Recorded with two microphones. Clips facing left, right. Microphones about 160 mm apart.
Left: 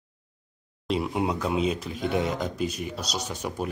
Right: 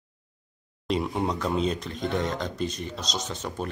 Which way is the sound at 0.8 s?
5° left (ahead or behind).